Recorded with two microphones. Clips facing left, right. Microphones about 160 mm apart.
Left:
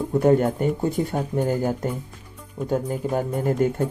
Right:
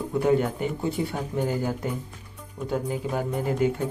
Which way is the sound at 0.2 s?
45° left (ahead or behind).